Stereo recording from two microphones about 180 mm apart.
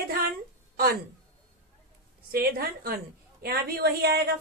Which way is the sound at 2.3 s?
55° right (ahead or behind).